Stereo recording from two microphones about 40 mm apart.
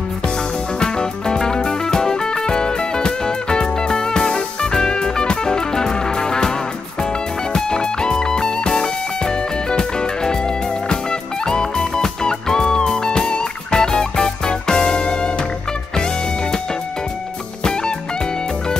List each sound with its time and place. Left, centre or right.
0.7 s music: centre
7.5 s music: centre